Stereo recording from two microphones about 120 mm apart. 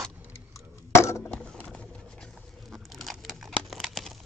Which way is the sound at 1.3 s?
10° left (ahead or behind).